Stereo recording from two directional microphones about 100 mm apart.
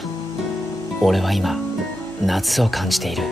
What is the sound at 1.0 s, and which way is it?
Speech, centre (ahead or behind).